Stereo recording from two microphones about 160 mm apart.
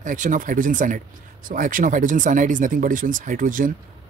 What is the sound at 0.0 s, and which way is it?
Speech, 55° right (ahead or behind).